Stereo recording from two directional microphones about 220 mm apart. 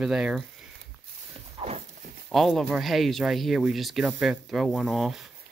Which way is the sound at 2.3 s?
Centre (ahead or behind).